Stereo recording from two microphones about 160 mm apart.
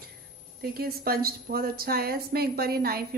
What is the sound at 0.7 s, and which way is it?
A woman's voice, 70° right (ahead or behind).